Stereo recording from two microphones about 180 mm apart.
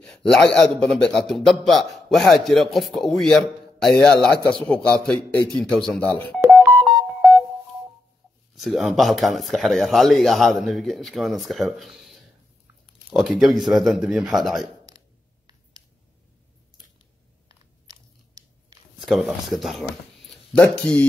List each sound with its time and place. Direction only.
0.0 s a man's voice: centre (ahead or behind)
8.5 s a man's voice: centre (ahead or behind)
19.0 s speech: centre (ahead or behind)